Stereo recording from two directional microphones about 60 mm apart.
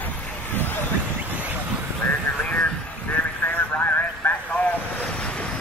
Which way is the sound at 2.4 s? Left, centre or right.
Left.